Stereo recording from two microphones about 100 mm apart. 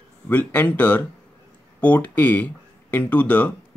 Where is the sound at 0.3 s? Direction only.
15° left (ahead or behind).